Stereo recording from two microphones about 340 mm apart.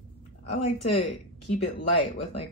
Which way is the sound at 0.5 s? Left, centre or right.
Centre.